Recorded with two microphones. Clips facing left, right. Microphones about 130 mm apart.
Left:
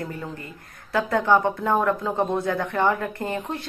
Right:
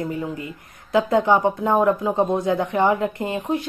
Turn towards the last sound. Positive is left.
turn(degrees=-15)  # may be behind; listen again after turning